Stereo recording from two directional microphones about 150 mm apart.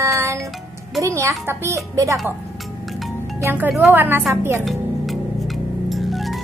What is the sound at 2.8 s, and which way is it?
Music, centre (ahead or behind).